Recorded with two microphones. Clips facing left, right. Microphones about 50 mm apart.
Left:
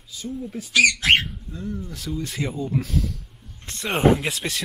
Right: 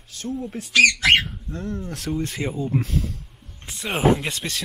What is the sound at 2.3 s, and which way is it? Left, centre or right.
Speech, centre.